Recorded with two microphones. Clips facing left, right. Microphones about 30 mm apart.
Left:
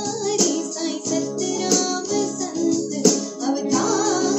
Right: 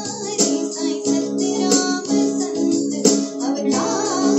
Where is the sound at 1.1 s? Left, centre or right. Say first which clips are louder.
Right 4 dB; right.